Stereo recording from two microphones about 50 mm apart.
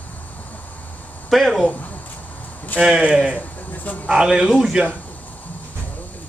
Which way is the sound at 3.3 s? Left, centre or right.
Left.